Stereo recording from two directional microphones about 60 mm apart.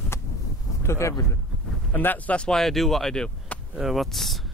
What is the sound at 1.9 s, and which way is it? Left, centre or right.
Speech, left.